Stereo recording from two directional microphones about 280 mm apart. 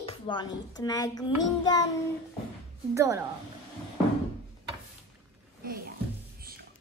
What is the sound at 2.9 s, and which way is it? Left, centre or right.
Speech, centre.